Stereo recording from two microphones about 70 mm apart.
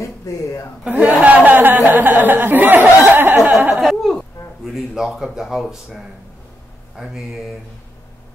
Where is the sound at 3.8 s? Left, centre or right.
Centre.